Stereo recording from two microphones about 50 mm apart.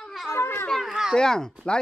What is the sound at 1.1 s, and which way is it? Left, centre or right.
Speech, centre.